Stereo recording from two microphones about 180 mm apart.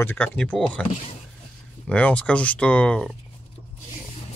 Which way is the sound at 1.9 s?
5° left (ahead or behind).